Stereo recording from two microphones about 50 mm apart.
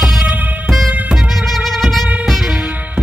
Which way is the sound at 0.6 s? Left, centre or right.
Centre.